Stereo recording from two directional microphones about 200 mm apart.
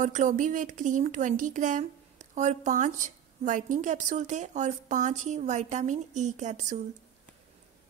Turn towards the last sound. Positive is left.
turn(degrees=-35)  # may be behind; listen again after turning